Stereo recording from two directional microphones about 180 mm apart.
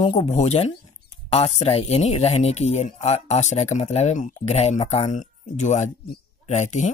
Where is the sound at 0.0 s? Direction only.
30° left (ahead or behind).